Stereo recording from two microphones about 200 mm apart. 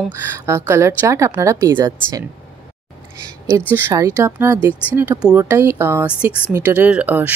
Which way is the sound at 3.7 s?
15° right (ahead or behind).